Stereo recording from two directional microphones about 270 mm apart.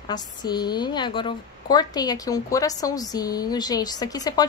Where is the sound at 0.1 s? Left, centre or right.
Centre.